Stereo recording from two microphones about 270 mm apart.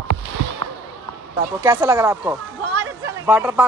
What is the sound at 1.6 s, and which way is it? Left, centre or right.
Speech, centre.